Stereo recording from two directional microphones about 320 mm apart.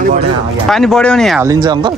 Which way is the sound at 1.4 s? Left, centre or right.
Centre.